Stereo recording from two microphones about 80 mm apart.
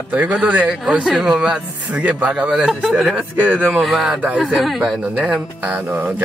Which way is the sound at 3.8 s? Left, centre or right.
Centre.